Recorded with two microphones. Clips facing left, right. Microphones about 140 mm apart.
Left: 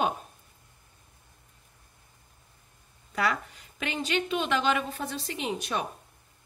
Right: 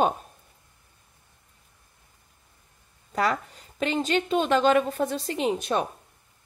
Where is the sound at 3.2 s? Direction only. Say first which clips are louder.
Right 3 dB; 40° right (ahead or behind).